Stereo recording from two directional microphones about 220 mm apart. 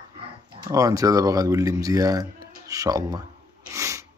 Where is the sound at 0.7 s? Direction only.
15° right (ahead or behind).